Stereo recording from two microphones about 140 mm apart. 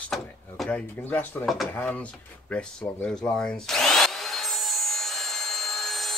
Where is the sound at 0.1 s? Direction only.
5° left (ahead or behind).